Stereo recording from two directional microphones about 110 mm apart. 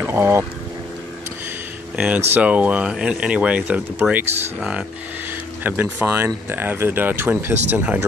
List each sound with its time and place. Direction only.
0.0 s speech: 20° right (ahead or behind)
2.0 s speech: 10° right (ahead or behind)